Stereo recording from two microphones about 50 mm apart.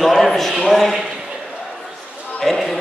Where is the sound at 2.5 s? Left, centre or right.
Centre.